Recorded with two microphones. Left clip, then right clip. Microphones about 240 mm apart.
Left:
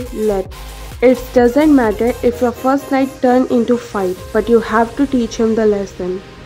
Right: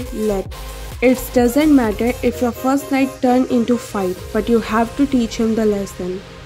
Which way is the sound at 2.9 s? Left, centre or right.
Right.